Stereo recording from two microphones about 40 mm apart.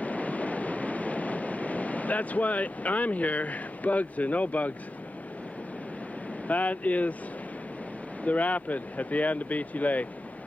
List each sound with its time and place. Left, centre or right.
0.0 s vehicle: left
6.4 s speech: left
8.2 s speech: left